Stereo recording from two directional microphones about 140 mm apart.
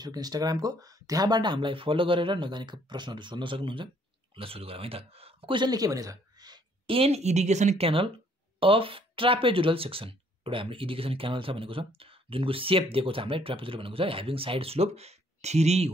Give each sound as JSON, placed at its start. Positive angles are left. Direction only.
{"t": 0.0, "sound": "speech", "side_deg": -30}
{"t": 7.0, "sound": "speech", "side_deg": -50}